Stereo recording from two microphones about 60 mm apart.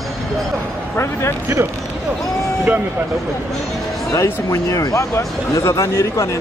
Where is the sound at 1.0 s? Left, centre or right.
Left.